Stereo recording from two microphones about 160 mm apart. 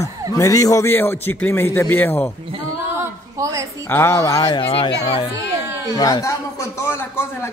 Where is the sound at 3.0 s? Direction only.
20° right (ahead or behind).